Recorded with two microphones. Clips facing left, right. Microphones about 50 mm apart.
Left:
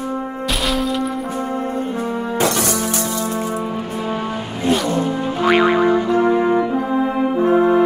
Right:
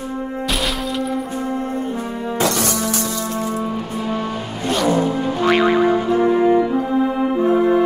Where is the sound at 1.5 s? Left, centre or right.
Left.